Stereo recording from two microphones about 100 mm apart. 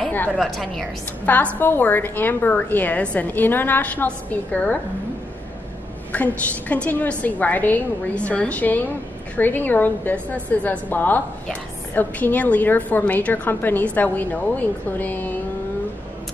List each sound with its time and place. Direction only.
0.4 s a woman's voice: centre (ahead or behind)
1.2 s a woman's voice: 15° left (ahead or behind)
6.1 s a woman's voice: 15° left (ahead or behind)